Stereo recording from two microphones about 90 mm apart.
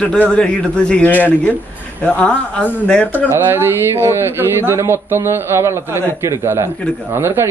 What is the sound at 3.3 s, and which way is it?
A man's voice, 25° right (ahead or behind).